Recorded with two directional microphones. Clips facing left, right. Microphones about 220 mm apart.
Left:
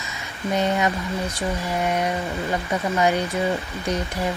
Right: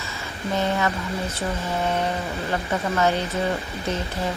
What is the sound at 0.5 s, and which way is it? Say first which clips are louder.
Speech: left 2 dB; 15° left (ahead or behind).